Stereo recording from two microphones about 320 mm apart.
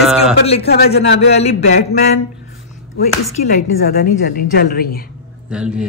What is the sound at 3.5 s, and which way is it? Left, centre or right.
A woman's voice, left.